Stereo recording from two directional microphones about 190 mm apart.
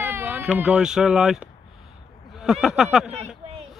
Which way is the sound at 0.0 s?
10° right (ahead or behind).